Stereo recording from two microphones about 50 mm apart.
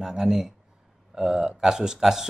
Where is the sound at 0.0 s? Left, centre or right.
Centre.